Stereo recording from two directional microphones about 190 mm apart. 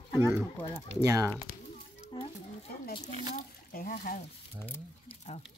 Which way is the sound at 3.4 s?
50° left (ahead or behind).